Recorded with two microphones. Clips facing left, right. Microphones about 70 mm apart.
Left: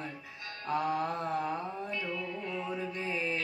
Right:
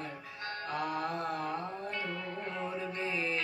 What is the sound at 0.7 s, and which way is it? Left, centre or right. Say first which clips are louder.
Mantra: left 5 dB; left.